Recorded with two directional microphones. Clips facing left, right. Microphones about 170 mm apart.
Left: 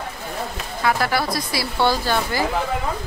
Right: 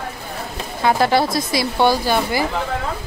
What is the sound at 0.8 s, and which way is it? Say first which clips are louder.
Speech: right 5 dB; 25° right (ahead or behind).